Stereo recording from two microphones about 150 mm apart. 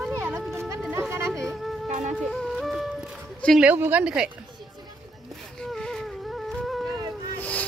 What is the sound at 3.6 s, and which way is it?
Speech, 10° right (ahead or behind).